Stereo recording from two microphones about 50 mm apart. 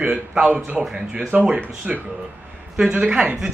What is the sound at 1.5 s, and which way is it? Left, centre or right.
Speech, right.